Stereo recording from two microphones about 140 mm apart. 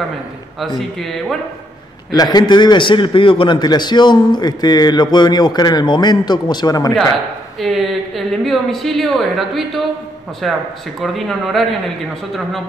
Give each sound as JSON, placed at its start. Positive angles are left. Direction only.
{"t": 0.6, "sound": "a woman's voice", "side_deg": 0}
{"t": 2.0, "sound": "a man's voice", "side_deg": 30}
{"t": 7.6, "sound": "a woman's voice", "side_deg": 0}